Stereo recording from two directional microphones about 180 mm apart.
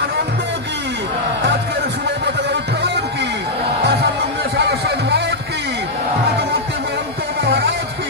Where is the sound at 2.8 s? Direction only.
70° right (ahead or behind).